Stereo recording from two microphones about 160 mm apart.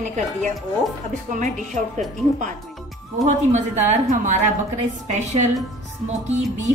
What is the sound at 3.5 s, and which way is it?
A woman's voice, 45° right (ahead or behind).